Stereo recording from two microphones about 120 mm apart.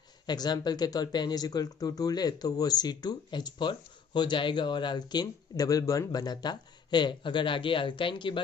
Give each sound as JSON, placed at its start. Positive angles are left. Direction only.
{"t": 0.3, "sound": "speech", "side_deg": 35}